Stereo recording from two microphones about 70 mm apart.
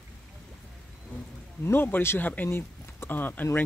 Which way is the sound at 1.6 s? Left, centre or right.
Left.